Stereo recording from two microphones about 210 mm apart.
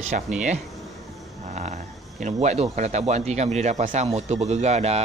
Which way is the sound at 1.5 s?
35° right (ahead or behind).